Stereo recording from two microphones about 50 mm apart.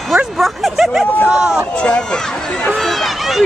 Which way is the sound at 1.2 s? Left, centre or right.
Centre.